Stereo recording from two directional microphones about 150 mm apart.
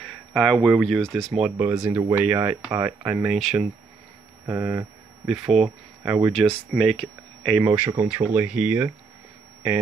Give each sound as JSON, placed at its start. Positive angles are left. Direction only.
{"t": 0.0, "sound": "speech", "side_deg": 5}
{"t": 3.3, "sound": "speech", "side_deg": 0}
{"t": 4.5, "sound": "speech", "side_deg": -20}
{"t": 5.2, "sound": "speech", "side_deg": 0}
{"t": 7.6, "sound": "speech", "side_deg": -10}